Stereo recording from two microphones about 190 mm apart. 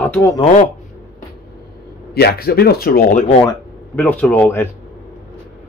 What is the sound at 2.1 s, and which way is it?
A man's voice, 55° left (ahead or behind).